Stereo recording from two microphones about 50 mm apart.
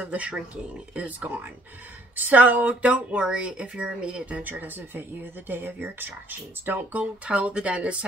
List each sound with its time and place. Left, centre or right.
0.0 s speech: right
4.4 s speech: right
7.0 s speech: right